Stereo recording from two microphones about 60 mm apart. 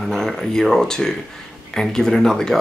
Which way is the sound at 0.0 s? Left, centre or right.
Centre.